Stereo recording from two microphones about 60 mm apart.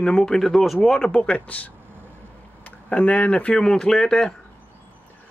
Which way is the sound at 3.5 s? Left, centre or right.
Centre.